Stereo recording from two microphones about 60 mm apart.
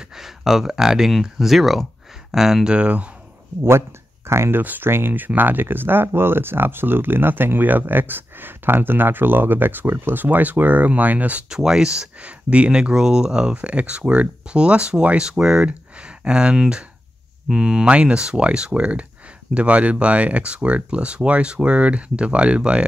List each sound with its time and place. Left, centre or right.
0.2 s speech: centre
4.3 s speech: right
4.6 s speech: right
11.5 s speech: centre
12.2 s speech: right